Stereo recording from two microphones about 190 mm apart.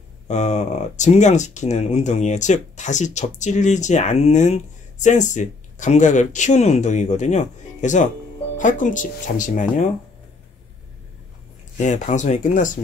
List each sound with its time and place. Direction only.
0.3 s speech: 35° left (ahead or behind)
11.8 s speech: 40° left (ahead or behind)